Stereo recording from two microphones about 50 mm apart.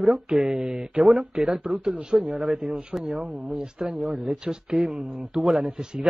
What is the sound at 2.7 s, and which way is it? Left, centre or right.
Speech, right.